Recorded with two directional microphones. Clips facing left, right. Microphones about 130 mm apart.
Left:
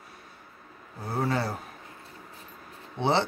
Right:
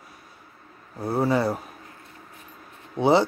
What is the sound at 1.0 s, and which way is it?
Speech, 10° right (ahead or behind).